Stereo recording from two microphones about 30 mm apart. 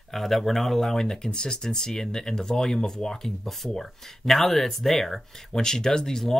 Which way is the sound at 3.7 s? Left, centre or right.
Centre.